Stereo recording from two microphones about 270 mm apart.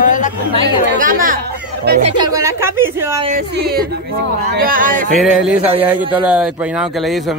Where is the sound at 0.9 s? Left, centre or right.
Right.